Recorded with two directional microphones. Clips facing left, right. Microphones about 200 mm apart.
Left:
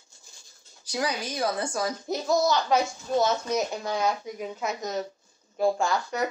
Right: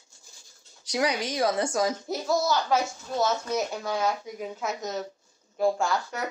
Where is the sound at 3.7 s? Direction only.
15° left (ahead or behind).